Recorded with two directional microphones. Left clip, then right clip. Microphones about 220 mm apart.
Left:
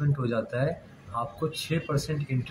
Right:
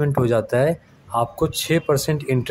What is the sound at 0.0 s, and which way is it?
Speech, 40° right (ahead or behind).